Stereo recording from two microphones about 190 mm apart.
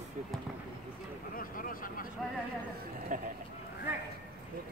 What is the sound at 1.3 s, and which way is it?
Speech, 50° left (ahead or behind).